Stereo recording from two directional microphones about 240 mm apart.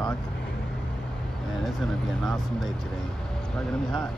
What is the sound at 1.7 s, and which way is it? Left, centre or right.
Speech, centre.